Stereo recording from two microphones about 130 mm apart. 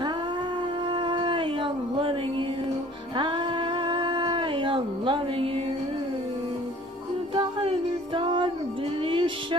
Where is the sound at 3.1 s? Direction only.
40° right (ahead or behind).